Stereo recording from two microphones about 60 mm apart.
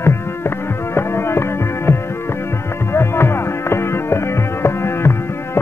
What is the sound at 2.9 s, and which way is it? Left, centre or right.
Music, left.